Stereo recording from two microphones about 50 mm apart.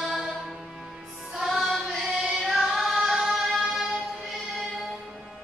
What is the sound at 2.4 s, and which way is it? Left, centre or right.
Music, centre.